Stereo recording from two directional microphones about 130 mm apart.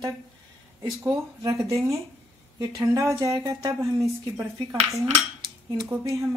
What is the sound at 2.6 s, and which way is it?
Speech, 25° right (ahead or behind).